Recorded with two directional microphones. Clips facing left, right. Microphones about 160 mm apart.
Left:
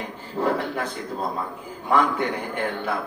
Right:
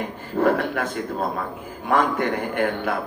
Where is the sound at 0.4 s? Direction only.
60° right (ahead or behind).